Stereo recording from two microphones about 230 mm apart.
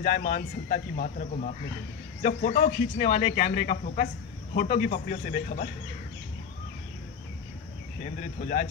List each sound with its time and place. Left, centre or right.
0.0 s speech: left
8.0 s speech: left